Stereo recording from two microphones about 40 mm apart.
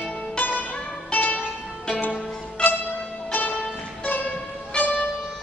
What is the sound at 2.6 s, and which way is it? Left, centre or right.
Music, left.